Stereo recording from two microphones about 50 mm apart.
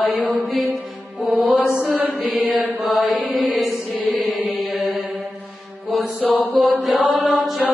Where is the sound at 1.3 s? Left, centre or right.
Right.